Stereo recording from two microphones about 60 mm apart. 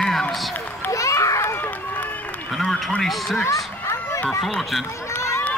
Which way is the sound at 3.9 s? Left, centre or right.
Left.